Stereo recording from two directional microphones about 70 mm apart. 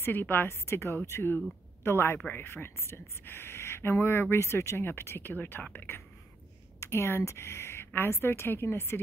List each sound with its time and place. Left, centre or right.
0.0 s speech: left
6.8 s speech: left